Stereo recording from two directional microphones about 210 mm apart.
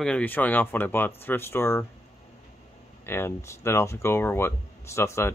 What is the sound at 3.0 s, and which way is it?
Speech, 10° left (ahead or behind).